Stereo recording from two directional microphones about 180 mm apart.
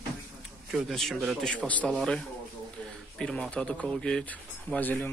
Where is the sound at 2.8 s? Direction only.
5° left (ahead or behind).